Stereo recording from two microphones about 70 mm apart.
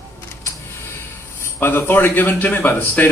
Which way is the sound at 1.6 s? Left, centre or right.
Left.